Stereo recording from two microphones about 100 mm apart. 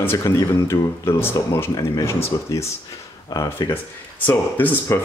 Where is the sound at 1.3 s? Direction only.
35° left (ahead or behind).